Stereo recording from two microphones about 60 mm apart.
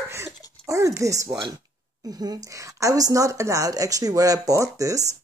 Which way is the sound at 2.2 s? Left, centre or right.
Right.